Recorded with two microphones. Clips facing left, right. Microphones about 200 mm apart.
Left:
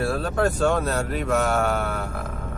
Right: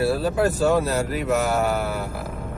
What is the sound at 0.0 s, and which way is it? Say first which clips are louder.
Speech: right 2 dB; 5° right (ahead or behind).